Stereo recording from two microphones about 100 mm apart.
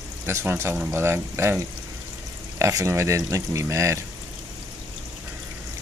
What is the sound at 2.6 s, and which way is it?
Speech, 30° right (ahead or behind).